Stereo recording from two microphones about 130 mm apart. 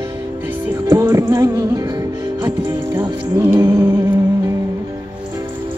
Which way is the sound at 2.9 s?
20° right (ahead or behind).